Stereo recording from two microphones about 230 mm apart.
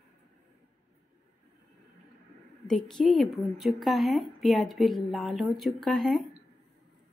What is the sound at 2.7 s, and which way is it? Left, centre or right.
A woman's voice, centre.